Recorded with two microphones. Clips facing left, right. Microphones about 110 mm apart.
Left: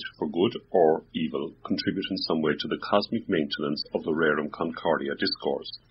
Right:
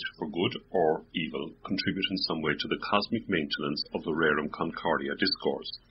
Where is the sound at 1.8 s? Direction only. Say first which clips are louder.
Left 4 dB; 15° left (ahead or behind).